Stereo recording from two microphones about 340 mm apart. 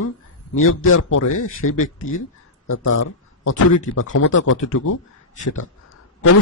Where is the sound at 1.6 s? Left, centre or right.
Left.